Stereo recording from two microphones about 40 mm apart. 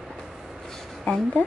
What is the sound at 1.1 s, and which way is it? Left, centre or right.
Speech, left.